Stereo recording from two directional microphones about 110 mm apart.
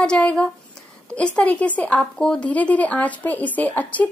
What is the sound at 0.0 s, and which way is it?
Speech, 10° left (ahead or behind).